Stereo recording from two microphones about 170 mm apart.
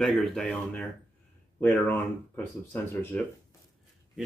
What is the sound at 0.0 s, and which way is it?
Speech, centre (ahead or behind).